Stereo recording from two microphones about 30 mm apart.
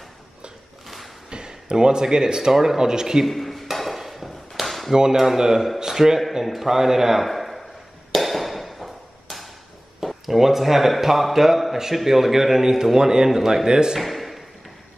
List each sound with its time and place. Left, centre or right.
0.8 s a sound: centre
1.3 s speech: right
3.3 s speech: centre
3.7 s chop: centre
4.9 s a man's voice: right
7.2 s a sound: centre
10.0 s a man's voice: centre
13.4 s a man's voice: centre
13.7 s speech: right
13.9 s a sound: centre